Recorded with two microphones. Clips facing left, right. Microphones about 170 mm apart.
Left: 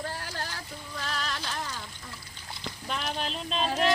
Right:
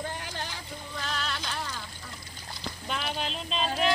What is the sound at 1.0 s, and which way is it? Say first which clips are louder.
Music: left 1 dB; 10° left (ahead or behind).